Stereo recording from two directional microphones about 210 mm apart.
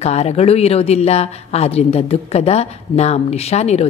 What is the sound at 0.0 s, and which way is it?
A woman's voice, 30° left (ahead or behind).